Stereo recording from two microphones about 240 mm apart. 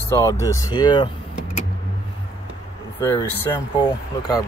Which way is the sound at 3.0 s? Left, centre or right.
Centre.